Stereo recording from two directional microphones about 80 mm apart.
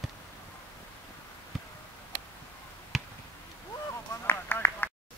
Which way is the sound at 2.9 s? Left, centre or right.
Centre.